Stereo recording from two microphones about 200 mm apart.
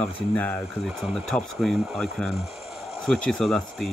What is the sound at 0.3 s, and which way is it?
Speech, 5° left (ahead or behind).